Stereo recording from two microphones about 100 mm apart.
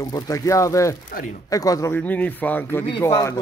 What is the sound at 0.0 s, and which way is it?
Speech, 40° left (ahead or behind).